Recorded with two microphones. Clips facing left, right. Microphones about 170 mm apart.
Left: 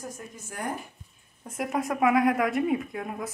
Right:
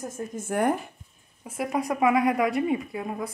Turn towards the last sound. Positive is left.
turn(degrees=0)  # may be behind; listen again after turning